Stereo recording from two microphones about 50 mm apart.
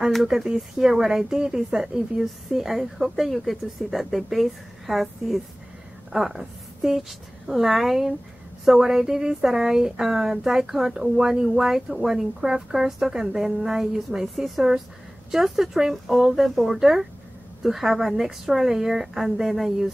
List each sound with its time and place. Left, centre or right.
0.3 s speech: centre